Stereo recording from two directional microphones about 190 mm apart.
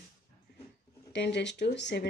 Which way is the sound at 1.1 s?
65° left (ahead or behind).